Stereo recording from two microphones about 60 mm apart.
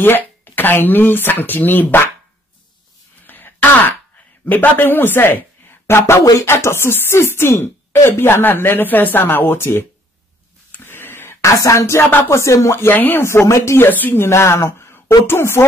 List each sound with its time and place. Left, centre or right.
0.0 s speech: left
3.3 s a sound: left
4.5 s a woman's voice: left
10.7 s a sound: left
11.4 s speech: left
12.8 s speech: left
13.5 s speech: left
13.7 s speech: left
14.2 s a woman's voice: left